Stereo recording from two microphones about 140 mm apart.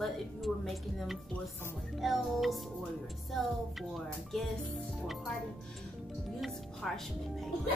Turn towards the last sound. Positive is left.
turn(degrees=0)  # may be behind; listen again after turning